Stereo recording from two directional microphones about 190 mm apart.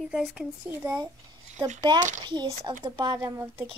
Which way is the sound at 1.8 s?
25° right (ahead or behind).